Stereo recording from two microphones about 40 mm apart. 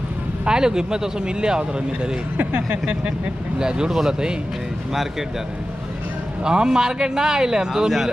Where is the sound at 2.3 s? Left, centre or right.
Right.